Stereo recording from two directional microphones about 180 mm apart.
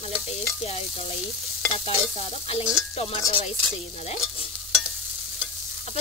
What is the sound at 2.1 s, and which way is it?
Sizzle, 35° left (ahead or behind).